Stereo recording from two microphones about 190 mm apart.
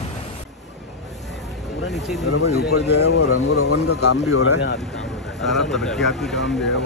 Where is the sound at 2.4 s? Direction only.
60° left (ahead or behind).